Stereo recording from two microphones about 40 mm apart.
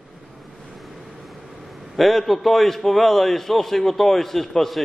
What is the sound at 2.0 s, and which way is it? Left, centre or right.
A man's voice, centre.